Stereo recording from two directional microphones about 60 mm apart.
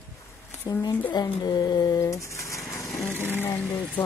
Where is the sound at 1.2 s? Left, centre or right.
Left.